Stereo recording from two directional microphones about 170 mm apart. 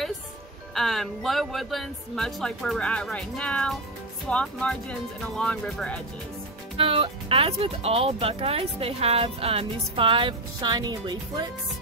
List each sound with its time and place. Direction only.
0.7 s speech: centre (ahead or behind)
6.8 s speech: 35° right (ahead or behind)